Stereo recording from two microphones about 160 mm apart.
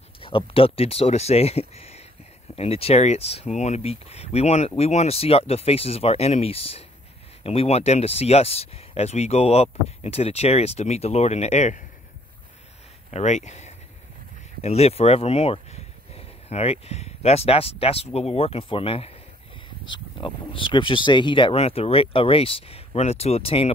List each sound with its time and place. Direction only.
0.2 s speech: 35° left (ahead or behind)
13.1 s speech: 45° left (ahead or behind)